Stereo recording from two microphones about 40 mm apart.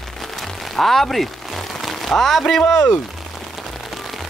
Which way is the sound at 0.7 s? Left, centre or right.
Centre.